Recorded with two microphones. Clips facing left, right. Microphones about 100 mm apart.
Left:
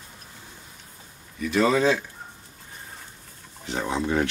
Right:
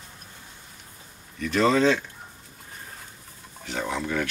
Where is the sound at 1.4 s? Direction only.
10° left (ahead or behind).